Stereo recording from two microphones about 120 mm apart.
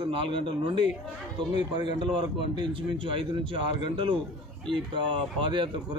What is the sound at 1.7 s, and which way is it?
Speech, 45° right (ahead or behind).